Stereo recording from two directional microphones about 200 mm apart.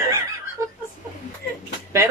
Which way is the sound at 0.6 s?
15° right (ahead or behind).